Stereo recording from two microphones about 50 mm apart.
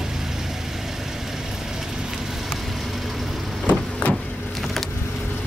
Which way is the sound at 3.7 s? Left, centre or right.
Left.